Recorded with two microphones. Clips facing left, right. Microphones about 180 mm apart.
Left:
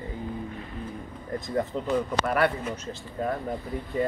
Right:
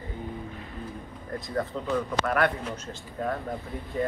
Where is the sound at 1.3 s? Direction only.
20° left (ahead or behind).